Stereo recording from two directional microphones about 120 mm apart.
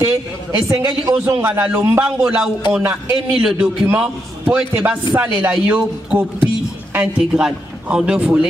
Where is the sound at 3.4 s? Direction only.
5° right (ahead or behind).